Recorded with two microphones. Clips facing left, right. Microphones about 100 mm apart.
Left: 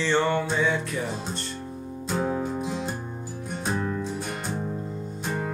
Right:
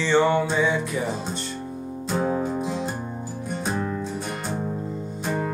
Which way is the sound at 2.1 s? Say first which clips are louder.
Right 3 dB; 5° right (ahead or behind).